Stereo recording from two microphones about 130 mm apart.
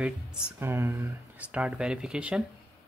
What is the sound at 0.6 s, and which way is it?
Speech, 20° right (ahead or behind).